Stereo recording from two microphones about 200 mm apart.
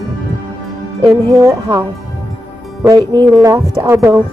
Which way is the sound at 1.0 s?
15° right (ahead or behind).